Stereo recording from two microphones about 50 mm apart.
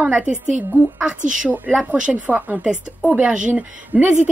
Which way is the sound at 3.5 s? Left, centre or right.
Right.